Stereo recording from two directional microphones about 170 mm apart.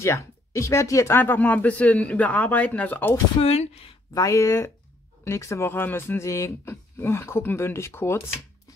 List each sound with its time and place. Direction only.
0.0 s speech: 15° left (ahead or behind)
3.3 s speech: 35° left (ahead or behind)
4.1 s speech: 20° left (ahead or behind)